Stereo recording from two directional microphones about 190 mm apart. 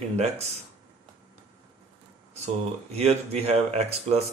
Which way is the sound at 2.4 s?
35° right (ahead or behind).